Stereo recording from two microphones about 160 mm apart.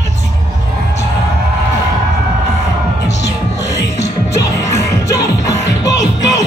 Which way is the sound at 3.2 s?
20° left (ahead or behind).